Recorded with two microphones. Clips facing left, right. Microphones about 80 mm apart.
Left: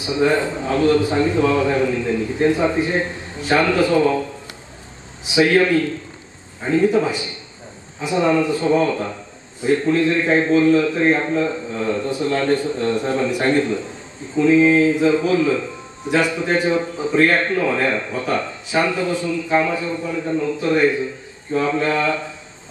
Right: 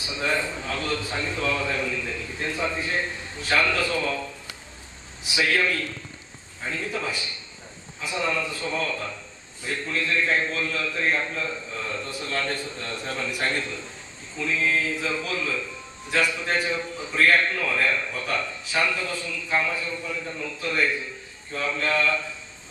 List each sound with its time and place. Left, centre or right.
0.0 s a man's voice: left
5.3 s a man's voice: left
8.1 s a man's voice: left